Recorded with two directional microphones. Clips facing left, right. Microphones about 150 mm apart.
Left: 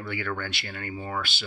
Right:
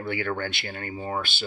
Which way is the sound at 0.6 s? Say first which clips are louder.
Right 2 dB; 40° right (ahead or behind).